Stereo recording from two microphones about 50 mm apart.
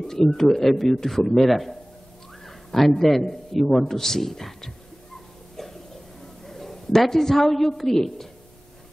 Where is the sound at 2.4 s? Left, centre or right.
Centre.